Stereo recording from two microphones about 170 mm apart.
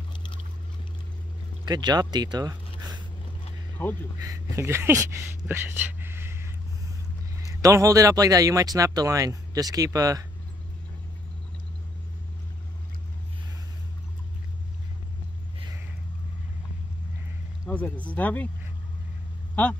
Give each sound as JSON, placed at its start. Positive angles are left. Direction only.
{"t": 1.7, "sound": "speech", "side_deg": -25}
{"t": 3.8, "sound": "speech", "side_deg": 15}
{"t": 4.2, "sound": "speech", "side_deg": -20}
{"t": 17.6, "sound": "speech", "side_deg": 10}